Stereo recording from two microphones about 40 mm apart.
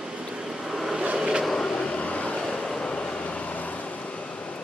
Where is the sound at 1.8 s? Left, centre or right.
Left.